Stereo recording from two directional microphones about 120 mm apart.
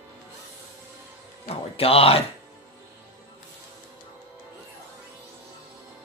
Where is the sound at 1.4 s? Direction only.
55° left (ahead or behind).